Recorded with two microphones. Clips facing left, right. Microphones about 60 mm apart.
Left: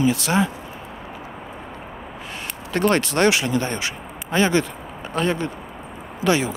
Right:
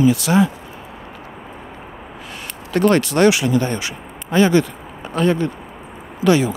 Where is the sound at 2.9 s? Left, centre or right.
Left.